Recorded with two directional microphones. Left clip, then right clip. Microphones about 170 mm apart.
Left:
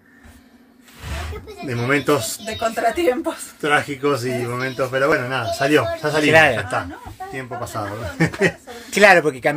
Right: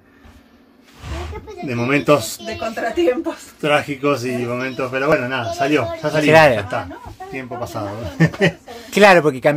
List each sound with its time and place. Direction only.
1.7 s speech: 30° right (ahead or behind)
2.4 s speech: 10° left (ahead or behind)
3.6 s a man's voice: 35° right (ahead or behind); by 6.1 s 15° right (ahead or behind)
6.3 s speech: 30° right (ahead or behind)
7.3 s a man's voice: 20° right (ahead or behind)